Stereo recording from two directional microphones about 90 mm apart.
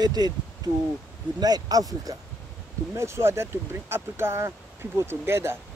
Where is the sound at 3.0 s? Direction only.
30° right (ahead or behind).